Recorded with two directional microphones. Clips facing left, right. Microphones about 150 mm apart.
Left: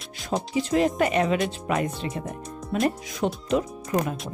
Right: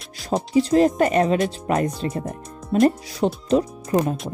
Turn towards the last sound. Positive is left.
turn(degrees=-35)  # may be behind; listen again after turning